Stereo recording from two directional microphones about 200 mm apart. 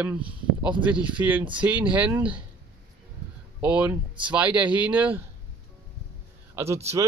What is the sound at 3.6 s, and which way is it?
Speech, 5° right (ahead or behind).